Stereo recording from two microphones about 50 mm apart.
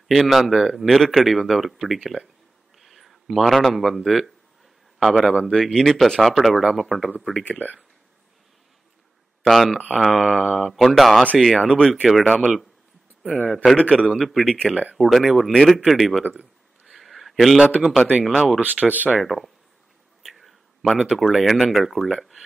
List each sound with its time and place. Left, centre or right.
0.1 s speech: centre
5.6 s speech: centre
7.3 s speech: left
9.4 s speech: centre
14.1 s speech: centre
14.7 s speech: centre
15.0 s speech: centre
16.3 s a sound: centre
18.2 s speech: centre
18.6 s speech: right
19.2 s speech: centre